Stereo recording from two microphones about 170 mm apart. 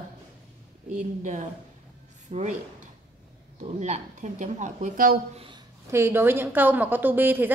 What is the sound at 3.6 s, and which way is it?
Speech, 45° right (ahead or behind).